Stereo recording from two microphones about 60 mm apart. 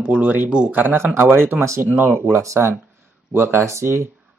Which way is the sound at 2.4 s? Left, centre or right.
Right.